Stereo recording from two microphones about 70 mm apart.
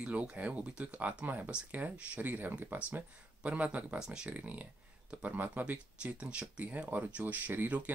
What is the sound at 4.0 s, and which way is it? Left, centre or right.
Speech, centre.